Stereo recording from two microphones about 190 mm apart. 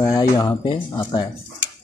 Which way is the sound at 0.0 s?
20° left (ahead or behind).